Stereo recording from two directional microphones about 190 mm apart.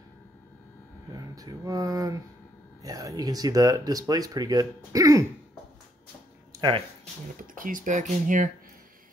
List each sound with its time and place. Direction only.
1.1 s speech: 20° right (ahead or behind)
6.5 s a sound: 25° right (ahead or behind)
7.3 s speech: 45° right (ahead or behind)